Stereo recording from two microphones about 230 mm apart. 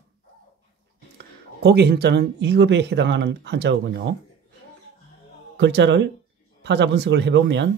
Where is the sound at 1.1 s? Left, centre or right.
Right.